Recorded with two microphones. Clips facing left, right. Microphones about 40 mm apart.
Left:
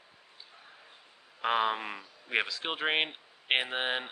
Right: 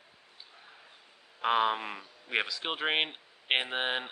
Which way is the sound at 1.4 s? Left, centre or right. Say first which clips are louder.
Right 1 dB; centre.